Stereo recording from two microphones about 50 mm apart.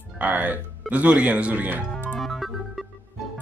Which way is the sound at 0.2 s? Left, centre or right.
Right.